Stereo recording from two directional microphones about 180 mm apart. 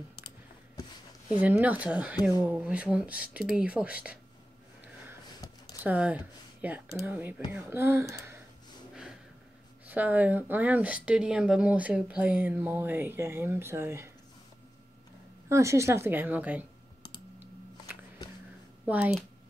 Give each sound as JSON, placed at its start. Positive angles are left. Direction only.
{"t": 1.4, "sound": "speech", "side_deg": -10}
{"t": 5.8, "sound": "speech", "side_deg": -10}
{"t": 9.8, "sound": "speech", "side_deg": -10}
{"t": 15.4, "sound": "speech", "side_deg": -15}
{"t": 18.9, "sound": "speech", "side_deg": -5}